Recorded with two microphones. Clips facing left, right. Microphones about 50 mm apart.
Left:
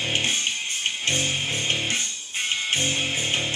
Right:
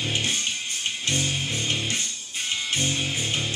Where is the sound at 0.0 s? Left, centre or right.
Left.